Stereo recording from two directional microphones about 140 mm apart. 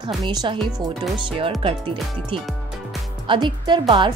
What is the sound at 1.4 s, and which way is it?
Speech, 40° right (ahead or behind).